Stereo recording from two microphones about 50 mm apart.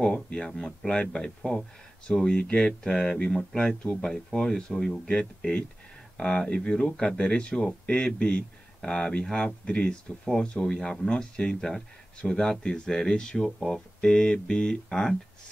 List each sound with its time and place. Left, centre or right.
0.0 s speech: centre
11.1 s speech: centre